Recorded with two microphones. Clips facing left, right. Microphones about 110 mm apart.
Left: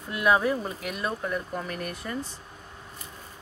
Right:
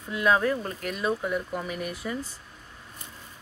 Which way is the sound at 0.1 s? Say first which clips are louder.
Even; 5° left (ahead or behind).